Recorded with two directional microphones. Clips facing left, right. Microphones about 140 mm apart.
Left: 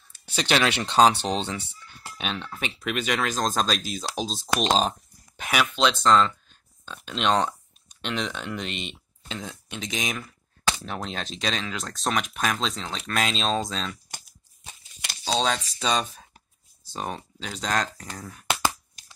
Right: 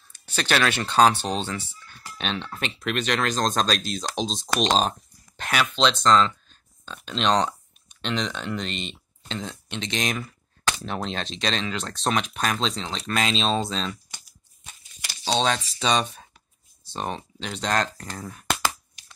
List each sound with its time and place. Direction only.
0.2 s speech: 15° left (ahead or behind)
2.1 s speech: 10° left (ahead or behind)
15.2 s speech: centre (ahead or behind)